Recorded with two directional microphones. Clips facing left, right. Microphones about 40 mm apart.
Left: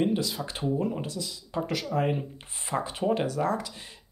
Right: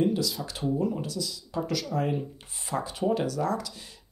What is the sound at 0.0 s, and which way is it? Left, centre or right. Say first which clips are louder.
Speech: right 1 dB; left.